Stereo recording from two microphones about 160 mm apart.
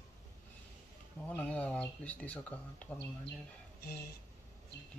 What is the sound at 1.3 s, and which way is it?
Speech, 10° left (ahead or behind).